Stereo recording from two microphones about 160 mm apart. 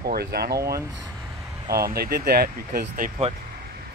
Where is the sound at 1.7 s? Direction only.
70° right (ahead or behind).